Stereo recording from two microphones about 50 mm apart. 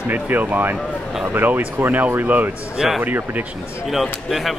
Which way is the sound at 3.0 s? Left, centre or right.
Right.